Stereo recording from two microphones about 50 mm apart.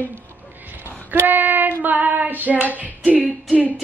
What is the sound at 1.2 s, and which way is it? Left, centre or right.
A woman's voice, right.